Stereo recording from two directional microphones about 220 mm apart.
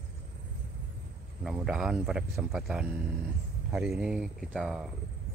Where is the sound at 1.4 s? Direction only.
5° right (ahead or behind).